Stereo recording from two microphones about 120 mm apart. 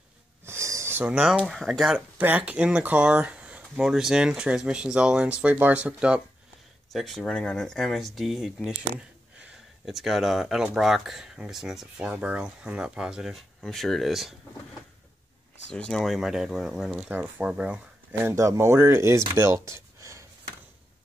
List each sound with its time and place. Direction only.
0.5 s a sound: 25° right (ahead or behind)
1.0 s speech: 10° right (ahead or behind)
6.9 s speech: centre (ahead or behind)
15.7 s speech: 5° left (ahead or behind)
18.2 s speech: 25° right (ahead or behind)